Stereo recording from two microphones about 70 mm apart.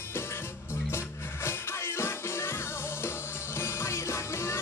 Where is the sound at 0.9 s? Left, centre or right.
Left.